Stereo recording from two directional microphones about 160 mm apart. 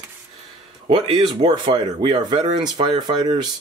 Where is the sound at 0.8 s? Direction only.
35° right (ahead or behind).